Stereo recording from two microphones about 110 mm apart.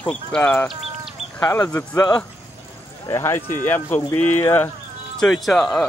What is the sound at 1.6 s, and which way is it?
Speech, 20° left (ahead or behind).